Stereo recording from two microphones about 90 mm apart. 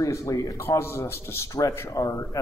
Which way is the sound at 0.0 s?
40° left (ahead or behind).